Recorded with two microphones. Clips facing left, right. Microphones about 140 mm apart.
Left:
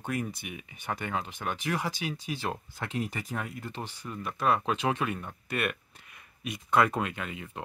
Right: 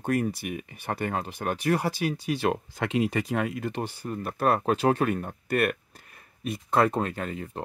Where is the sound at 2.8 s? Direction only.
90° right; by 3.8 s 70° right (ahead or behind).